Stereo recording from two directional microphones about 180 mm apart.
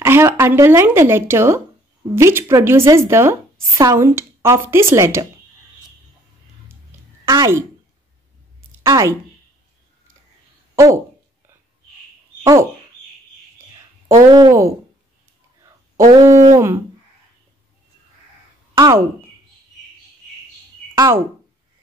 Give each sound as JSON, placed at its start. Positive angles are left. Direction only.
{"t": 0.0, "sound": "speech", "side_deg": -15}
{"t": 7.2, "sound": "speech", "side_deg": -15}
{"t": 8.8, "sound": "speech", "side_deg": -15}
{"t": 14.0, "sound": "speech", "side_deg": -20}
{"t": 16.1, "sound": "speech", "side_deg": -20}
{"t": 18.8, "sound": "speech", "side_deg": -20}
{"t": 20.9, "sound": "speech", "side_deg": -20}